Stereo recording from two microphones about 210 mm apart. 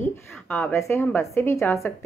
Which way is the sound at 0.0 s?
10° left (ahead or behind).